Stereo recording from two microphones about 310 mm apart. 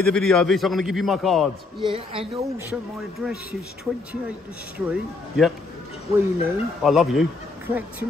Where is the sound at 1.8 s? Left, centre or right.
Centre.